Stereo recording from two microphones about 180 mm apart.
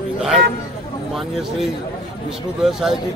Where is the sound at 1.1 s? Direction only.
Centre (ahead or behind).